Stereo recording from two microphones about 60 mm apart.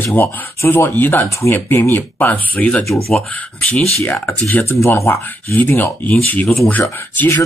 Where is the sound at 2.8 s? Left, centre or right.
Centre.